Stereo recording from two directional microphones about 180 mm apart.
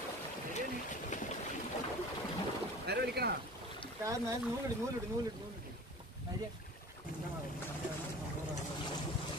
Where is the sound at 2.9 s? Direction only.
65° right (ahead or behind).